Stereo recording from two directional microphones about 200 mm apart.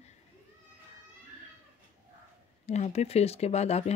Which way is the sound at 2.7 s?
35° left (ahead or behind).